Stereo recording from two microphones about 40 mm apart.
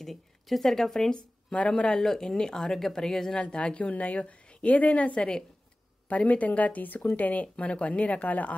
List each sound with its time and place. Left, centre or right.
0.0 s speech: centre
1.1 s speech: left
1.9 s speech: centre
3.3 s a woman's voice: left